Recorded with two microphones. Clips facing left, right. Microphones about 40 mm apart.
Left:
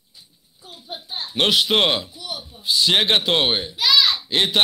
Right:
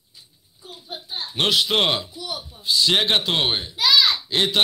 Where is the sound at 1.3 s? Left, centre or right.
Centre.